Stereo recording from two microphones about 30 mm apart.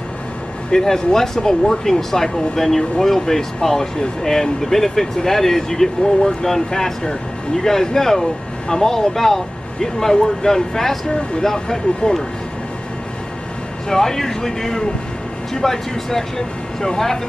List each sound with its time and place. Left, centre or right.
0.7 s speech: left
11.5 s speech: left
13.8 s speech: centre